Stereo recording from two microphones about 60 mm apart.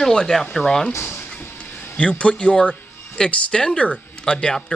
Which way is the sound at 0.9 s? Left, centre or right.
Left.